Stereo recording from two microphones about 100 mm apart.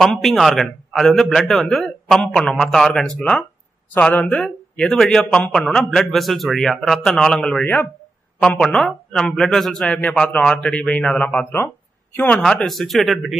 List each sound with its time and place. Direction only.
0.0 s a man's voice: centre (ahead or behind)
7.6 s speech: 20° left (ahead or behind)
8.4 s a man's voice: 5° left (ahead or behind)
12.6 s a man's voice: centre (ahead or behind)